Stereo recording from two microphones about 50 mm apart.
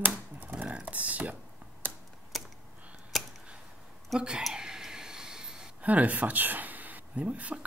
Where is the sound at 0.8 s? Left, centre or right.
Right.